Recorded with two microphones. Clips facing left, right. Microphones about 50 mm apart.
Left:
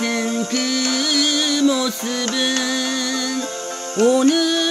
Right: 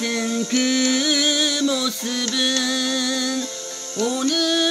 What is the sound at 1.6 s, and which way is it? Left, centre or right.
Music, centre.